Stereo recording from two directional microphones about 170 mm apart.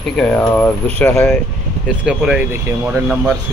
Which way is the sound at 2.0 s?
5° right (ahead or behind).